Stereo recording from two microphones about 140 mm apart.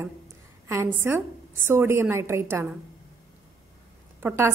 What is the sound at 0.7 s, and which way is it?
A woman's voice, 20° right (ahead or behind).